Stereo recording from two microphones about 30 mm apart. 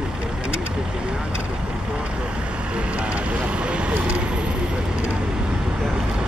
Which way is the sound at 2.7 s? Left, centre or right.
Right.